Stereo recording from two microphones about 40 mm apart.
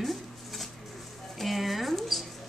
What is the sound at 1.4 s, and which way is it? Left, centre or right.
Speech, centre.